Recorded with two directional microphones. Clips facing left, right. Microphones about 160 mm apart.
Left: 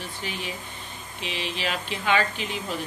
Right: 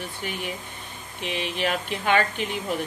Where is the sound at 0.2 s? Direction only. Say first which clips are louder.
Right 2 dB; 55° right (ahead or behind).